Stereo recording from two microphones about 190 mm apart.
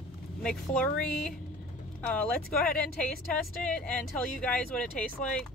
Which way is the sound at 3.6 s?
5° left (ahead or behind).